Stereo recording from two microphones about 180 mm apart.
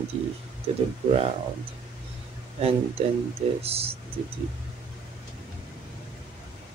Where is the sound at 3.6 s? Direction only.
35° right (ahead or behind).